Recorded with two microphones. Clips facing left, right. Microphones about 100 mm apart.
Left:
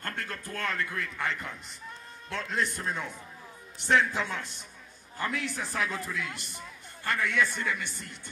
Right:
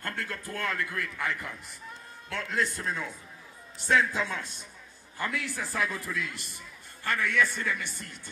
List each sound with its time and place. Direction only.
0.2 s a man's voice: 15° right (ahead or behind)
2.2 s a man's voice: 20° left (ahead or behind)
4.1 s a man's voice: 15° right (ahead or behind)
5.3 s a man's voice: 20° left (ahead or behind)